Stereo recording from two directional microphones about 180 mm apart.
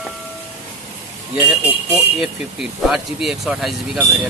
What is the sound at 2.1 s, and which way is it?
Speech, 5° right (ahead or behind).